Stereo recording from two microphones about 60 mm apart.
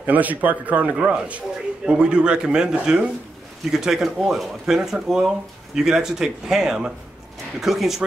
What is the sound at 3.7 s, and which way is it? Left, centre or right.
Speech, centre.